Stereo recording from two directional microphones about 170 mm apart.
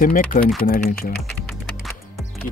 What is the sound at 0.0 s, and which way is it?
Speech, 55° left (ahead or behind).